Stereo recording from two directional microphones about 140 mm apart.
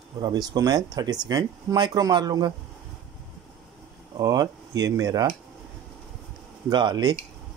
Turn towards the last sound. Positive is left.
turn(degrees=-30)  # may be behind; listen again after turning